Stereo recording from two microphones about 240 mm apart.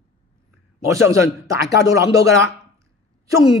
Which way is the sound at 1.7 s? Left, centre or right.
Left.